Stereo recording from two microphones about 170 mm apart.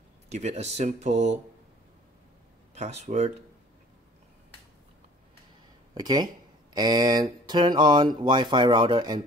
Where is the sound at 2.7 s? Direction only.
40° right (ahead or behind).